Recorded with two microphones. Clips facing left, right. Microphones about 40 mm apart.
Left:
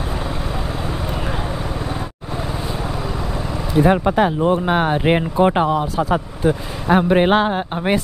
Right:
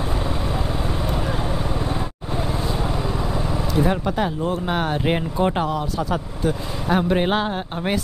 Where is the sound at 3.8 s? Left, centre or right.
Left.